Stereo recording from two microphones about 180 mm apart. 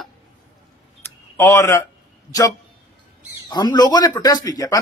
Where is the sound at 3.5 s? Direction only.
25° left (ahead or behind).